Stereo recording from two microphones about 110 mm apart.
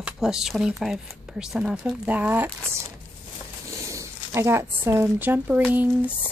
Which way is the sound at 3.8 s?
25° right (ahead or behind).